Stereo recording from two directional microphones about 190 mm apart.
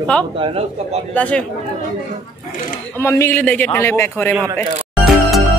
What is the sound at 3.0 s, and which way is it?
A man's voice, 15° left (ahead or behind).